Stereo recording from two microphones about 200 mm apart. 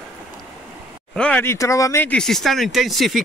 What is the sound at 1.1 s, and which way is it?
Speech, 5° left (ahead or behind).